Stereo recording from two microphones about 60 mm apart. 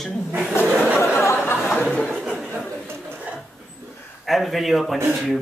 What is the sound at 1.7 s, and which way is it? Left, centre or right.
Chuckle, centre.